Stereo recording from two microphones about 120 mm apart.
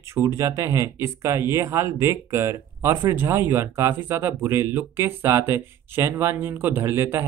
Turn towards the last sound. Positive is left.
turn(degrees=-20)  # may be behind; listen again after turning